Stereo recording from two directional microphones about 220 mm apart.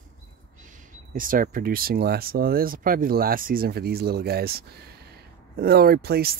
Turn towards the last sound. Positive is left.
turn(degrees=-45)  # may be behind; listen again after turning